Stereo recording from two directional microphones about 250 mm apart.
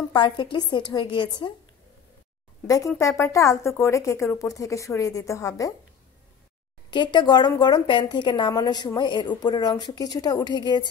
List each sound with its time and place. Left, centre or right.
0.1 s a woman's voice: centre
2.6 s a woman's voice: centre
6.9 s a woman's voice: centre